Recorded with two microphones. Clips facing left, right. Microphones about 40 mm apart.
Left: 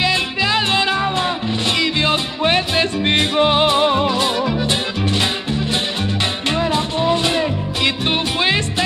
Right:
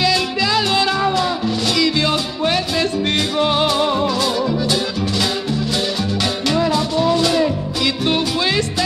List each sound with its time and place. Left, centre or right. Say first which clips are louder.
0.0 s music: right 1 dB; left
6.7 s music: right 1 dB; left